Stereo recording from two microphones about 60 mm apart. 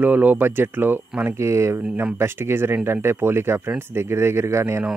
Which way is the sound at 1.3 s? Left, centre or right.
Right.